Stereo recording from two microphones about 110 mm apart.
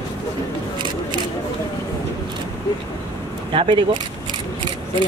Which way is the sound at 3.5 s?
55° right (ahead or behind).